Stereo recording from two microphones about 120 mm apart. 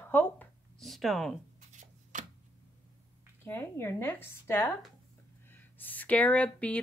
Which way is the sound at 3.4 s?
20° left (ahead or behind).